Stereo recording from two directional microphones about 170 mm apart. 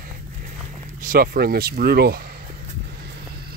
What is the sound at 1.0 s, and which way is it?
Speech, 60° right (ahead or behind).